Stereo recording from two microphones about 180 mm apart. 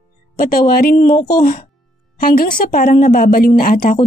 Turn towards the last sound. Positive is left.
turn(degrees=50)  # may be behind; listen again after turning